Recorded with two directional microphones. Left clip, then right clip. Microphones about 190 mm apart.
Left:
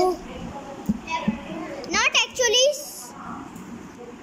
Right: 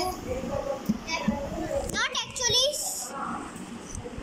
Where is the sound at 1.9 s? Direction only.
30° left (ahead or behind).